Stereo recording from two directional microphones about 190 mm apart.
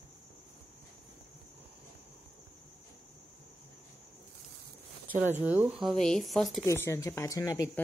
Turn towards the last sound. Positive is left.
turn(degrees=15)  # may be behind; listen again after turning